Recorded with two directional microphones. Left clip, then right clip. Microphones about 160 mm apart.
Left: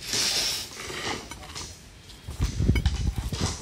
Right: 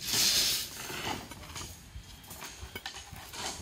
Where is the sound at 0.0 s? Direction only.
70° right (ahead or behind).